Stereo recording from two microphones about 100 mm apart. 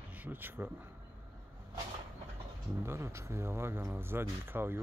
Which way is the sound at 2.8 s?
25° right (ahead or behind).